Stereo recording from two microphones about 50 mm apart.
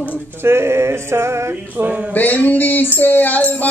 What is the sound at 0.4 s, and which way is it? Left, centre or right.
Music, right.